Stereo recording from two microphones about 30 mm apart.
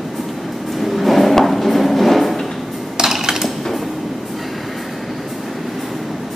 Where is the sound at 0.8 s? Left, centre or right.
Centre.